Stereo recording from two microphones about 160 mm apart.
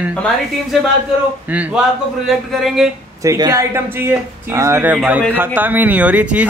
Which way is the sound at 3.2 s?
20° right (ahead or behind).